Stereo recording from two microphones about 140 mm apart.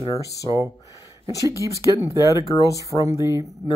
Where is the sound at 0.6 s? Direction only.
25° right (ahead or behind).